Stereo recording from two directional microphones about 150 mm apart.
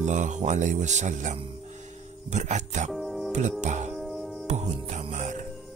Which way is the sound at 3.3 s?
50° right (ahead or behind).